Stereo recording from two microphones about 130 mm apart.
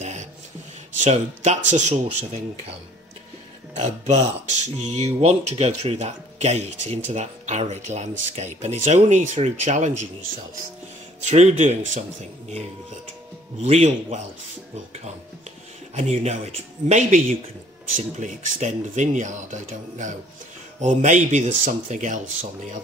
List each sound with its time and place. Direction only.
0.0 s a sound: 60° right (ahead or behind)
0.9 s speech: 65° right (ahead or behind)
3.7 s speech: 60° right (ahead or behind)
11.2 s speech: 60° right (ahead or behind)
13.6 s speech: 55° right (ahead or behind)
15.9 s speech: 60° right (ahead or behind)